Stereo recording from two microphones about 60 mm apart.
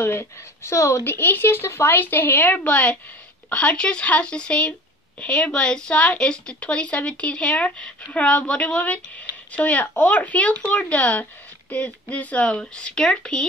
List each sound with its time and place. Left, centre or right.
0.0 s speech: left
1.0 s speech: left
2.0 s speech: left; by 13.5 s centre